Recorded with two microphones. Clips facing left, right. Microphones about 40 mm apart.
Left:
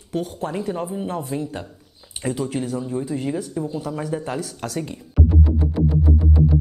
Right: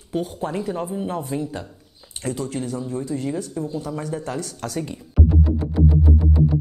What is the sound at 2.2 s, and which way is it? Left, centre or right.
Speech, centre.